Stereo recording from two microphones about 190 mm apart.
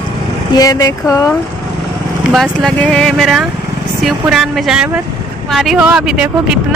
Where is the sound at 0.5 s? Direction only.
20° left (ahead or behind).